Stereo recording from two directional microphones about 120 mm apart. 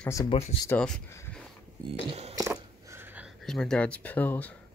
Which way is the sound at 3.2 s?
5° left (ahead or behind).